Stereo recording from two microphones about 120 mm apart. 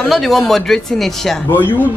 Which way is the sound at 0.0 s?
Centre (ahead or behind).